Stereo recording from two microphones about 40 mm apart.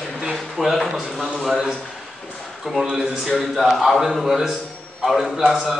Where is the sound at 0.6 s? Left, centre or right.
Centre.